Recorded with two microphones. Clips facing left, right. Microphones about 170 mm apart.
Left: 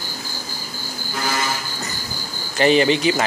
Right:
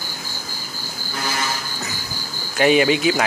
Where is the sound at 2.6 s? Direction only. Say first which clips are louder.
Even; 5° right (ahead or behind).